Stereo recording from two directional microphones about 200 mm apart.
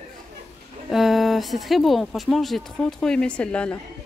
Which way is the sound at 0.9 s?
Centre (ahead or behind).